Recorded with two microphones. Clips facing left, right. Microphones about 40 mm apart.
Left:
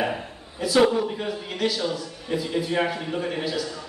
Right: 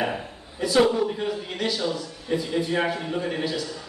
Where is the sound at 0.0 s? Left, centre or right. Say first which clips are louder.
Left 1 dB; centre.